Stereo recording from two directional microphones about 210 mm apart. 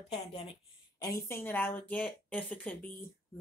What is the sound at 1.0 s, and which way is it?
Speech, 15° left (ahead or behind).